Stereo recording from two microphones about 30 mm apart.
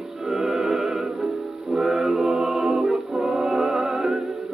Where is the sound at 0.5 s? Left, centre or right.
Centre.